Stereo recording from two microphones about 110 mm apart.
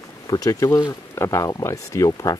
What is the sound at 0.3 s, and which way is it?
Speech, 30° left (ahead or behind).